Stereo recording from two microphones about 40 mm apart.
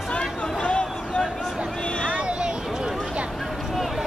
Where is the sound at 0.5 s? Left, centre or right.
Left.